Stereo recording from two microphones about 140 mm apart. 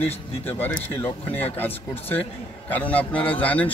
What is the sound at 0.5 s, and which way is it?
A man's voice, 15° left (ahead or behind).